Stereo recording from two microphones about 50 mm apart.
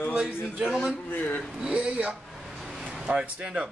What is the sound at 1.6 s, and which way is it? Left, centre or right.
Speech, right.